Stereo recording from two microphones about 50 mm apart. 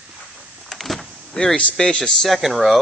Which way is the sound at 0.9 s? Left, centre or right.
Centre.